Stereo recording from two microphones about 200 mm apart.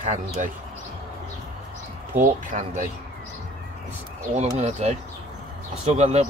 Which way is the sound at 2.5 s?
40° right (ahead or behind).